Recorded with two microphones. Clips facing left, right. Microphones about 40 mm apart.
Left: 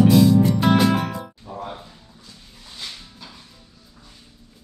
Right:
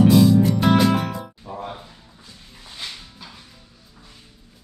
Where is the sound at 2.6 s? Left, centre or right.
Centre.